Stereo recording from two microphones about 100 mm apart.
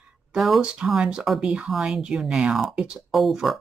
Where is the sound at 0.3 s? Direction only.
5° right (ahead or behind).